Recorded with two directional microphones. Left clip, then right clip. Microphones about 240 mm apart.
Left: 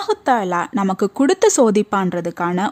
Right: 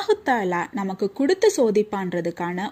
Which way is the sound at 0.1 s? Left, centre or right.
Centre.